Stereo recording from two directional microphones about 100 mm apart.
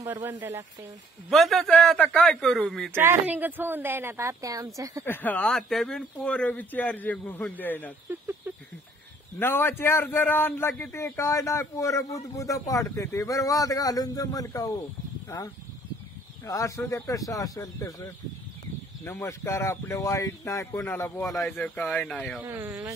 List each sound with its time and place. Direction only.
0.1 s a woman's voice: 20° right (ahead or behind)
1.3 s a man's voice: centre (ahead or behind)
2.9 s a woman's voice: 25° right (ahead or behind)
5.0 s speech: 20° left (ahead or behind)
5.5 s speech: 5° left (ahead or behind)
8.1 s a sound: 20° right (ahead or behind)
9.4 s a man's voice: 20° left (ahead or behind)
19.1 s a man's voice: 30° left (ahead or behind)
21.2 s a man's voice: 5° left (ahead or behind)
22.5 s a woman's voice: 20° right (ahead or behind)